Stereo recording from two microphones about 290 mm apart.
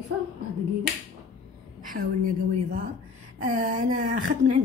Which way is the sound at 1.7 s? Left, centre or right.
Right.